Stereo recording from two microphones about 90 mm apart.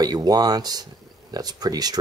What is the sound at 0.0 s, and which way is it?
Speech, 45° right (ahead or behind).